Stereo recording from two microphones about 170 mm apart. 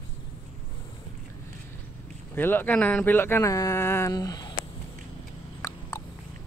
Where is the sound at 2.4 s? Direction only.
10° left (ahead or behind).